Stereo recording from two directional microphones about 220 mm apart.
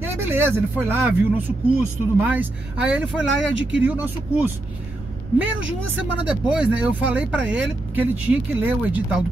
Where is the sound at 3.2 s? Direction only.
55° right (ahead or behind).